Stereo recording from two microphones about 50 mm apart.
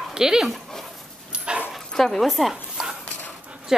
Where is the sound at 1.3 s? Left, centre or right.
Right.